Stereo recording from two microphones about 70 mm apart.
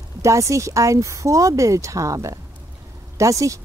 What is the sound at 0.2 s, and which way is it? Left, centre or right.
Speech, right.